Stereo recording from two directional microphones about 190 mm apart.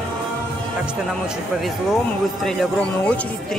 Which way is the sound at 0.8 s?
5° right (ahead or behind).